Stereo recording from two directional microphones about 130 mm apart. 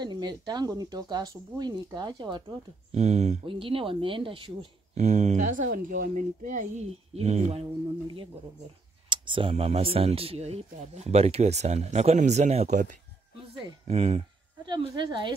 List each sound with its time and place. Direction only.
0.0 s speech: 35° right (ahead or behind)
2.9 s speech: 60° right (ahead or behind)
3.4 s speech: 45° right (ahead or behind)
4.9 s speech: 60° right (ahead or behind)
9.1 s speech: 40° right (ahead or behind); by 12.9 s 70° right (ahead or behind)
13.8 s speech: 60° right (ahead or behind)
14.7 s speech: 40° right (ahead or behind)